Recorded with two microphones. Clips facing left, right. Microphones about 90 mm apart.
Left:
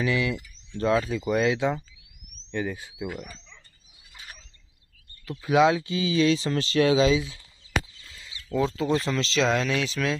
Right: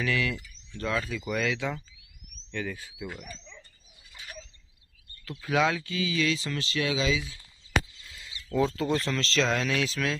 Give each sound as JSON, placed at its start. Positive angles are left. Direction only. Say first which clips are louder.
{"t": 0.0, "sound": "speech", "louder": "left 3 dB", "side_deg": 20}
{"t": 5.4, "sound": "speech", "louder": "left 6 dB", "side_deg": 20}
{"t": 8.1, "sound": "speech", "louder": "left 2 dB", "side_deg": 0}